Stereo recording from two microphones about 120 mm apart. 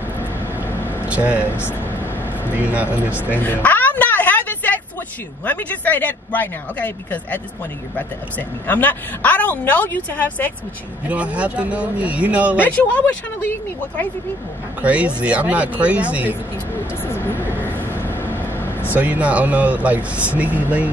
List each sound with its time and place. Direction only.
0.7 s vehicle: 20° left (ahead or behind)
1.0 s speech: 10° right (ahead or behind)
1.5 s speech: 20° left (ahead or behind)
3.6 s a sound: 15° left (ahead or behind)
5.4 s a woman's voice: 10° left (ahead or behind)
8.4 s a woman's voice: 15° left (ahead or behind)
11.1 s speech: 10° right (ahead or behind)
12.5 s a woman's voice: 15° left (ahead or behind)
14.8 s speech: 10° right (ahead or behind)
17.1 s vehicle: 20° left (ahead or behind)
18.9 s speech: 10° right (ahead or behind)